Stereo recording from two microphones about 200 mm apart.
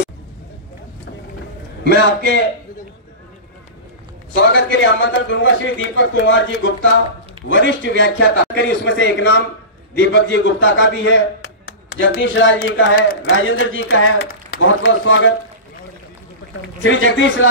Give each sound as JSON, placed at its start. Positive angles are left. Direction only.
{"t": 4.4, "sound": "a man's voice", "side_deg": 65}
{"t": 16.8, "sound": "a man's voice", "side_deg": 75}